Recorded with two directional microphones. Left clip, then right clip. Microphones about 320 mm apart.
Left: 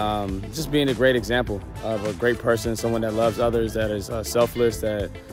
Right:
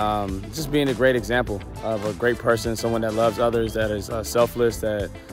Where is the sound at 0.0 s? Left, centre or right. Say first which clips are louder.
Right 2 dB; centre.